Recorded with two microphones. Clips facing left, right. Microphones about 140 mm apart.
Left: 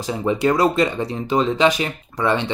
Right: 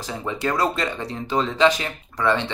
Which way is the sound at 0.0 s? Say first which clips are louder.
Left 7 dB; 15° left (ahead or behind).